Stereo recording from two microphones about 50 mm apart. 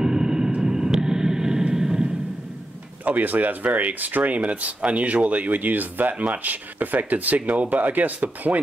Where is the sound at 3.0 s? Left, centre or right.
Right.